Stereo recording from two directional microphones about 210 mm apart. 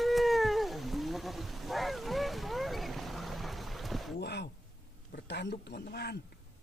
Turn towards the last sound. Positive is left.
turn(degrees=50)  # may be behind; listen again after turning